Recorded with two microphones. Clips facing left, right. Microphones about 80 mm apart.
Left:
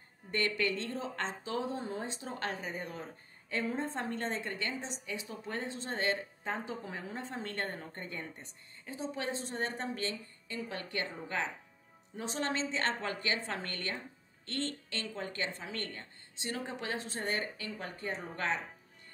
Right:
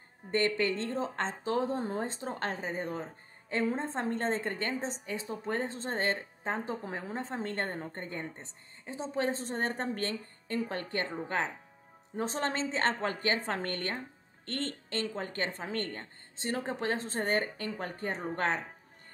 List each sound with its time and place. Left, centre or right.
0.3 s speech: right